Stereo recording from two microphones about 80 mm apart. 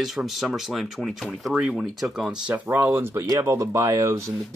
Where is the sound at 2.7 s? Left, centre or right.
Right.